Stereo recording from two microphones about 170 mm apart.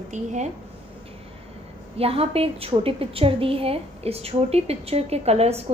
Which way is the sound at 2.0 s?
35° right (ahead or behind).